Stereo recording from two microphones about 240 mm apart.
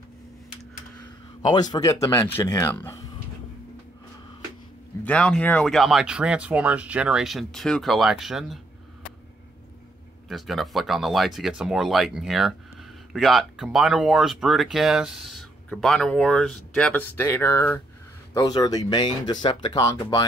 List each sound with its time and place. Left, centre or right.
1.5 s speech: centre
5.0 s speech: centre
10.2 s speech: centre